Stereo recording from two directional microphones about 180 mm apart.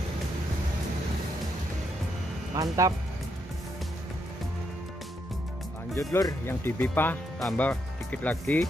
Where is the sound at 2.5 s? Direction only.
20° right (ahead or behind).